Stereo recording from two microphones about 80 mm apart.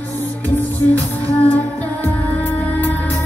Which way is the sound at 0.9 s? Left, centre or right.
Left.